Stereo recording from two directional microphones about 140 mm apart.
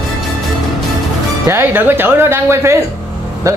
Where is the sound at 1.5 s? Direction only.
15° right (ahead or behind).